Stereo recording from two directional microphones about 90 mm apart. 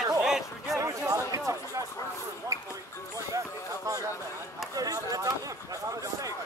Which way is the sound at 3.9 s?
40° right (ahead or behind).